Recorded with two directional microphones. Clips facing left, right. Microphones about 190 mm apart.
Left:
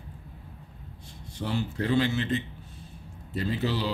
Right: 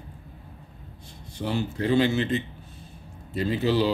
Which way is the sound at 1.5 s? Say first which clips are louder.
Right 3 dB; 15° right (ahead or behind).